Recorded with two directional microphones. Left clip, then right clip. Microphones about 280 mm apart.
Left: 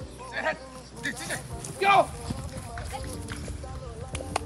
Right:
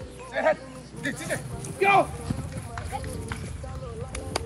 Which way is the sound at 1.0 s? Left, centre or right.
Centre.